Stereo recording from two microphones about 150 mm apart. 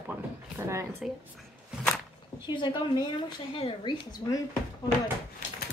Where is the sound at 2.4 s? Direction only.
30° left (ahead or behind).